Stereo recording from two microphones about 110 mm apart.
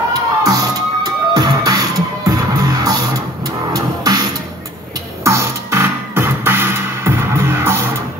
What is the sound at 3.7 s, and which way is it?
Music, 35° right (ahead or behind).